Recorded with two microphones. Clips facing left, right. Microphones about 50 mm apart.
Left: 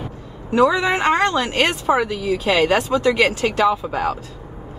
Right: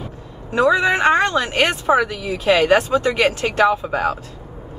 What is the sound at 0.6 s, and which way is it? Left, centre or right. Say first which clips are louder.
Speech: right 1 dB; right.